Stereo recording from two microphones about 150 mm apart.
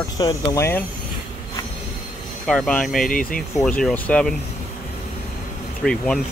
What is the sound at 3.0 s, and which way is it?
Speech, 65° left (ahead or behind).